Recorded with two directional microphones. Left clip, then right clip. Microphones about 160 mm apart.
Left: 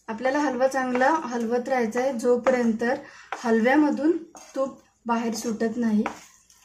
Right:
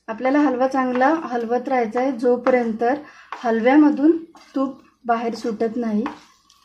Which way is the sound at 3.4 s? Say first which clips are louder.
Right 4 dB; 40° right (ahead or behind).